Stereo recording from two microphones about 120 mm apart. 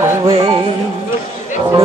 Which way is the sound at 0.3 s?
35° right (ahead or behind).